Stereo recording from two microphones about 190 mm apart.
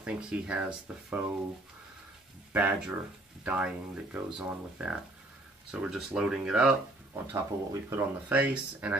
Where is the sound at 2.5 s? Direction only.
5° right (ahead or behind).